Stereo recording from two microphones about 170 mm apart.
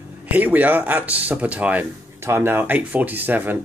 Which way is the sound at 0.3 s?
10° right (ahead or behind).